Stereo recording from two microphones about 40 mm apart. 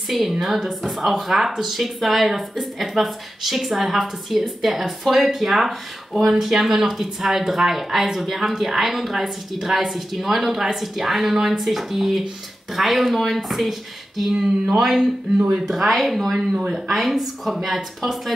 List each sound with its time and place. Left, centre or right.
0.1 s a woman's voice: centre
16.3 s speech: centre
16.8 s a woman's voice: centre